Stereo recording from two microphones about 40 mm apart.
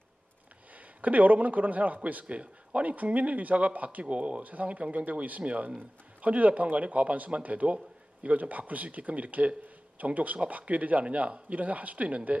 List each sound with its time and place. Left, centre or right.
1.0 s speech: right